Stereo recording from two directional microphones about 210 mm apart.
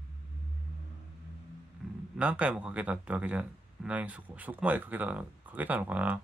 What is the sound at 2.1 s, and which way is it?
Speech, 5° right (ahead or behind).